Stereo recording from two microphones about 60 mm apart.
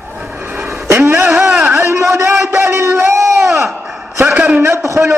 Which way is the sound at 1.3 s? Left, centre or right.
Centre.